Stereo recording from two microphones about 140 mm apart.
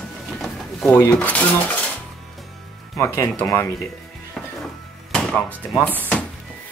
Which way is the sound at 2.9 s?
20° left (ahead or behind).